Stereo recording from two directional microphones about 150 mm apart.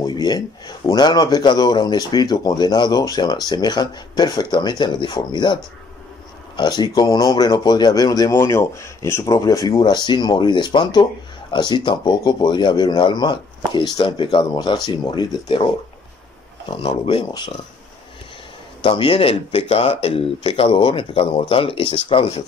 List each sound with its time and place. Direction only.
0.0 s a man's voice: 25° left (ahead or behind)
16.7 s speech: 35° left (ahead or behind)
18.8 s speech: 35° left (ahead or behind)